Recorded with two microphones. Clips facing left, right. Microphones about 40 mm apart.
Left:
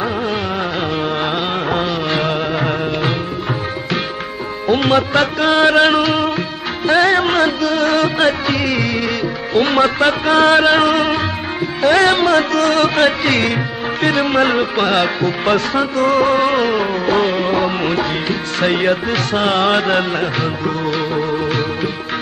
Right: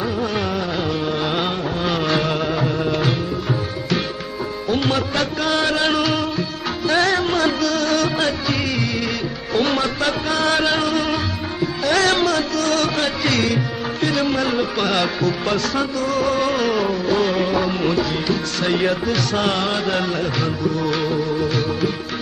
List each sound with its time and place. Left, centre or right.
2.0 s music: left
4.6 s music: left
7.8 s music: left
11.8 s music: left
12.4 s music: left
14.8 s music: left